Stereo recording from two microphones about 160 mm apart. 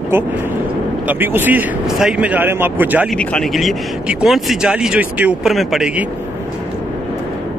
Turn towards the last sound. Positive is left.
turn(degrees=-5)  # may be behind; listen again after turning